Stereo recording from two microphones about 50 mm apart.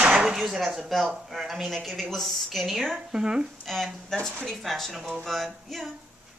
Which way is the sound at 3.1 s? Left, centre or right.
Centre.